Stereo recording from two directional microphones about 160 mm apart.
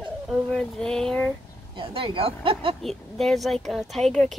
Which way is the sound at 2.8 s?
Centre (ahead or behind).